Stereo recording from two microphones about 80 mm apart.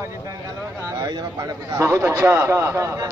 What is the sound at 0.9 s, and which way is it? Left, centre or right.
Speech, right.